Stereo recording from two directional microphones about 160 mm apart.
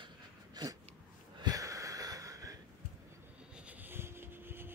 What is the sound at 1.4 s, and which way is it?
Wheeze, 20° right (ahead or behind).